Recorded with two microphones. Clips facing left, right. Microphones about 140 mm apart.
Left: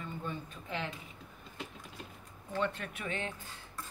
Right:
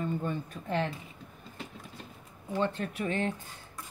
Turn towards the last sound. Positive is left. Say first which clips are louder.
# right 8 dB
turn(degrees=-35)  # may be behind; listen again after turning